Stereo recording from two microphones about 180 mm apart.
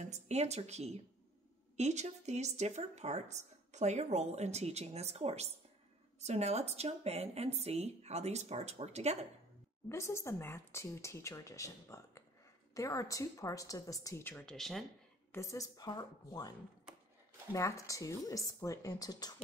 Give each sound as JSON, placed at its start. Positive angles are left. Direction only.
{"t": 0.0, "sound": "speech", "side_deg": -40}
{"t": 9.8, "sound": "speech", "side_deg": 15}
{"t": 15.3, "sound": "a woman's voice", "side_deg": 15}